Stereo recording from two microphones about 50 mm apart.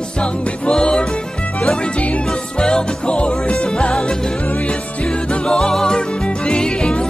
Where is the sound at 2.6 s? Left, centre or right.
Centre.